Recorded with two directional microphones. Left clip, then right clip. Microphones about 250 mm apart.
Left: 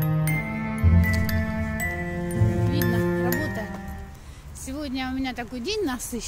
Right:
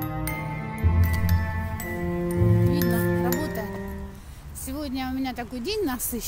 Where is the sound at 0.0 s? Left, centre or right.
Centre.